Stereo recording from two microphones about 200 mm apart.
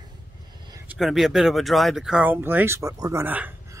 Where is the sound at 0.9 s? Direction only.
Centre (ahead or behind).